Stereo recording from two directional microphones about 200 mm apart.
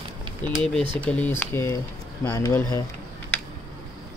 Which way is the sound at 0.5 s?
Centre (ahead or behind).